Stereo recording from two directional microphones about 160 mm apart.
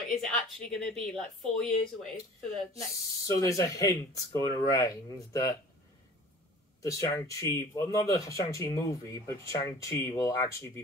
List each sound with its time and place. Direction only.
0.1 s speech: centre (ahead or behind)
2.7 s speech: 20° left (ahead or behind)
6.8 s speech: 20° left (ahead or behind)